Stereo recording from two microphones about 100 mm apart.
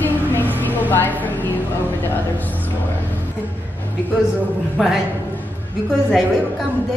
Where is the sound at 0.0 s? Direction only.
20° left (ahead or behind).